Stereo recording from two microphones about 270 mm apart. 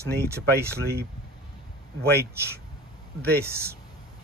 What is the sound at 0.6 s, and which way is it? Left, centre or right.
Speech, right.